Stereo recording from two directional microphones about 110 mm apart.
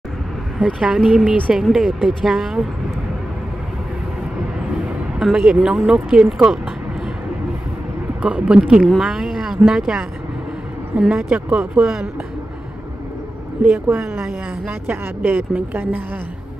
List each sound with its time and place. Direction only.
0.7 s speech: 5° right (ahead or behind)
5.2 s speech: 5° right (ahead or behind)
8.2 s speech: 10° right (ahead or behind)
13.6 s speech: 10° right (ahead or behind)
14.7 s speech: 15° right (ahead or behind)